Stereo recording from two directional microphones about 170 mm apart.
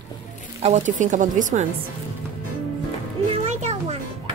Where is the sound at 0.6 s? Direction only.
45° right (ahead or behind).